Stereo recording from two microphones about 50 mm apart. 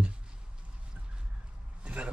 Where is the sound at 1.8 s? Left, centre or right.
Right.